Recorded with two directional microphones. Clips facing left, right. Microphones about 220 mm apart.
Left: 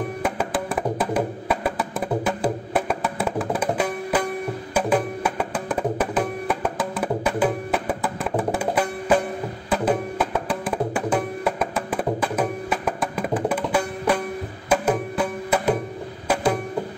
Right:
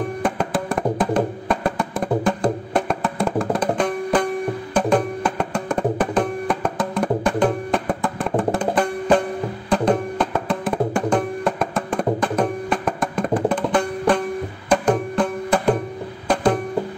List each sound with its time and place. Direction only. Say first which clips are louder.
0.2 s music: right 2 dB; 5° left (ahead or behind)